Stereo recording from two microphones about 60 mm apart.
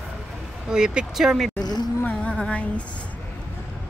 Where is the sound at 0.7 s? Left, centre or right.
Centre.